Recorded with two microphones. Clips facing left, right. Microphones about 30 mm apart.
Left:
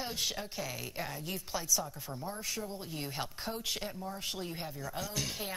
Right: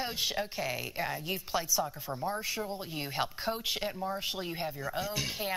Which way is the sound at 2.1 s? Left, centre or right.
Right.